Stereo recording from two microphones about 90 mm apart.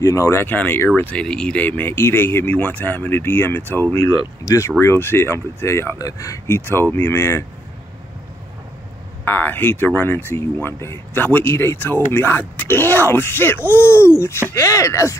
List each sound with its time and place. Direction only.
0.0 s speech: 35° left (ahead or behind)
0.5 s speech: 20° left (ahead or behind)
4.2 s speech: 35° left (ahead or behind)
6.4 s speech: 25° left (ahead or behind)
9.2 s speech: 25° left (ahead or behind)